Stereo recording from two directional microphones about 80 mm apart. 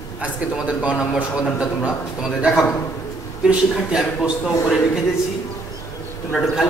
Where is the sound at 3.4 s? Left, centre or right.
Centre.